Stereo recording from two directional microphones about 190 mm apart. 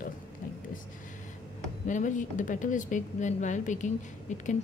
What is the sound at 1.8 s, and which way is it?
A woman's voice, 40° left (ahead or behind).